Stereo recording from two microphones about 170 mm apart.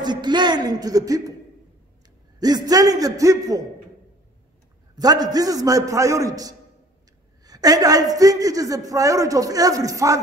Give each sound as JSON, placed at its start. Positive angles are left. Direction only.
{"t": 0.0, "sound": "a man's voice", "side_deg": -25}
{"t": 2.4, "sound": "a man's voice", "side_deg": -25}
{"t": 4.9, "sound": "a man's voice", "side_deg": -25}